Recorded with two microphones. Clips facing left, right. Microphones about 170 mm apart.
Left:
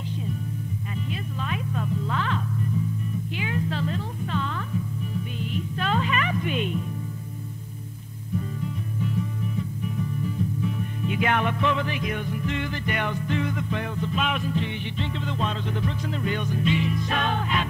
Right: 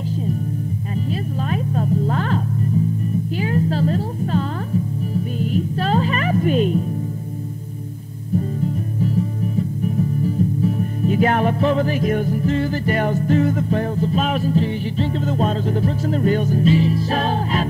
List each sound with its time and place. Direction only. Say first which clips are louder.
1.5 s music: right 8 dB; 40° right (ahead or behind)
8.4 s music: right 9 dB; 40° right (ahead or behind)